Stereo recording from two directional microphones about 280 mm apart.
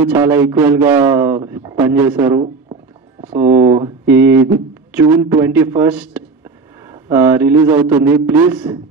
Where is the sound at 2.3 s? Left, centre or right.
Right.